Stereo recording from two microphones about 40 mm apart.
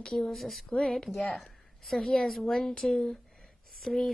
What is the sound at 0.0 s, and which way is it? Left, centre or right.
Speech, centre.